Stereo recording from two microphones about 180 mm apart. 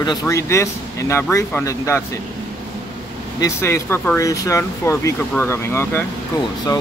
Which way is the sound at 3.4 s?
15° left (ahead or behind).